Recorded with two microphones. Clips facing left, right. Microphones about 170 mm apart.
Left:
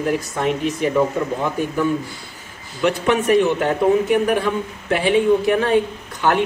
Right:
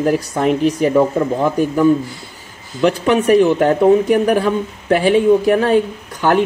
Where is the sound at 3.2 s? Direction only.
40° right (ahead or behind).